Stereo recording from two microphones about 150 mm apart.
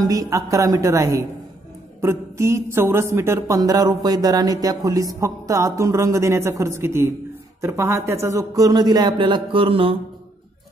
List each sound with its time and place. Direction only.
0.0 s a woman's voice: 25° right (ahead or behind)